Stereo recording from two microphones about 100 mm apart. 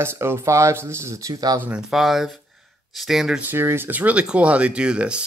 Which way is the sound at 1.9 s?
Centre (ahead or behind).